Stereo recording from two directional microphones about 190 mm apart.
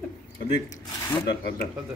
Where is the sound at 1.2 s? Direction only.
60° left (ahead or behind).